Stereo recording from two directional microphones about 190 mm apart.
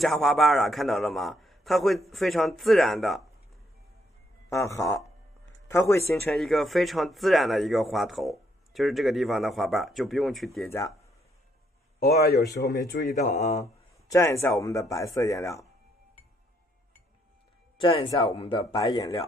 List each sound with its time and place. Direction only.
0.0 s speech: centre (ahead or behind)
4.5 s speech: 15° left (ahead or behind)
6.3 s speech: centre (ahead or behind)
12.0 s speech: 55° left (ahead or behind); by 13.7 s 35° left (ahead or behind)
14.0 s speech: 15° left (ahead or behind)
17.7 s speech: 30° left (ahead or behind)